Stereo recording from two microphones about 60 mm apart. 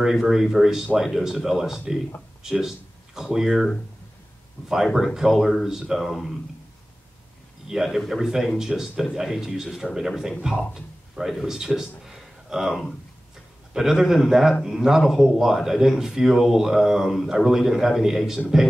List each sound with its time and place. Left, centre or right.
0.0 s speech: centre
4.9 s speech: centre
7.6 s speech: centre
12.0 s a sound: centre
13.7 s speech: centre